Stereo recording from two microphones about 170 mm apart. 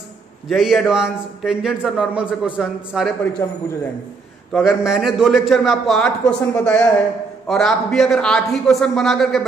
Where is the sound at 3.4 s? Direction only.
20° left (ahead or behind).